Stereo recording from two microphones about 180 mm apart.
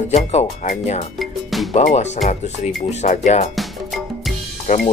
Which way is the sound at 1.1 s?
Centre (ahead or behind).